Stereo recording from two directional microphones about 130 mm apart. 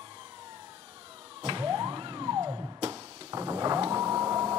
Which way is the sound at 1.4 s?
40° right (ahead or behind).